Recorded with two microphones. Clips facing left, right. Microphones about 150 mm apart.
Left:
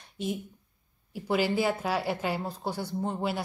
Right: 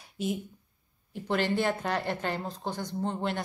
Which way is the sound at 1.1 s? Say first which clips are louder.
Left 1 dB; 5° left (ahead or behind).